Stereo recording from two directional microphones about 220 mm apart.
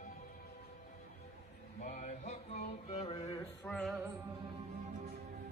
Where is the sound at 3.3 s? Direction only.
15° left (ahead or behind).